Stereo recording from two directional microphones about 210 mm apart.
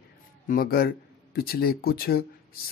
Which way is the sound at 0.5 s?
45° left (ahead or behind).